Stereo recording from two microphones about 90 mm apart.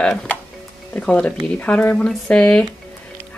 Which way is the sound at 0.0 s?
10° left (ahead or behind).